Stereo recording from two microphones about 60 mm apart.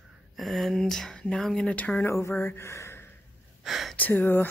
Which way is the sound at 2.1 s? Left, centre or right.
Left.